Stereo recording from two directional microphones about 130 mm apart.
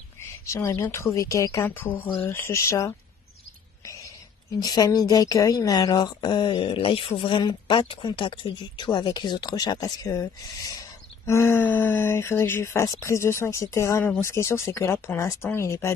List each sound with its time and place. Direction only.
0.5 s speech: 25° left (ahead or behind)
3.8 s a sound: 25° left (ahead or behind)
4.6 s speech: 30° left (ahead or behind)